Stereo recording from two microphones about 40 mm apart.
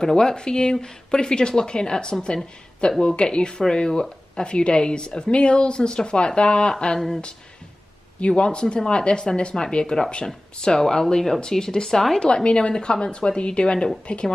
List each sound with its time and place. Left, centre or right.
0.0 s speech: centre
8.2 s speech: left; by 12.2 s centre
12.2 s speech: left